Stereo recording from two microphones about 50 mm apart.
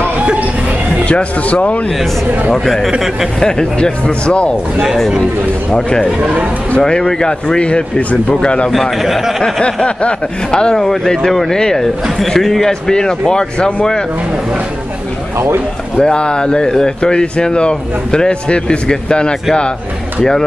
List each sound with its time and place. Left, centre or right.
1.0 s speech: left
2.5 s speech: centre; by 4.6 s left
4.8 s speech: centre
5.7 s speech: centre
8.9 s speech: centre
9.4 s speech: centre
15.3 s speech: right
16.0 s speech: centre